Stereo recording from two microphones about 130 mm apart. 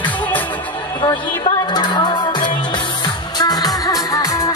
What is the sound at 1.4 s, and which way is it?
Music, 35° left (ahead or behind).